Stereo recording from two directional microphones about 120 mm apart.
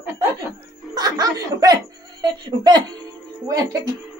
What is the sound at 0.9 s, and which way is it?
Speech, 35° right (ahead or behind).